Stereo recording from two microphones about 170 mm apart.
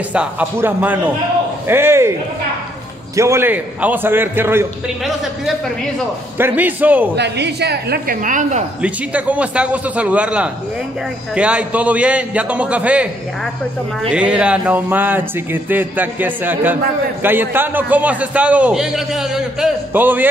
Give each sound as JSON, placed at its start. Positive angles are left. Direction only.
{"t": 0.1, "sound": "a man's voice", "side_deg": -10}
{"t": 3.2, "sound": "a man's voice", "side_deg": -15}
{"t": 6.3, "sound": "a man's voice", "side_deg": -10}
{"t": 7.2, "sound": "a woman's voice", "side_deg": -85}
{"t": 8.8, "sound": "a man's voice", "side_deg": -10}
{"t": 14.1, "sound": "a man's voice", "side_deg": -5}